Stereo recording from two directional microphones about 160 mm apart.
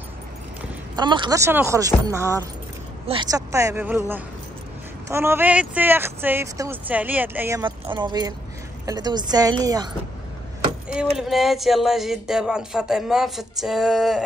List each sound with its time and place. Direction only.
0.9 s speech: 30° right (ahead or behind)
1.4 s speech: 15° right (ahead or behind)
7.6 s speech: 30° right (ahead or behind)
11.1 s speech: centre (ahead or behind)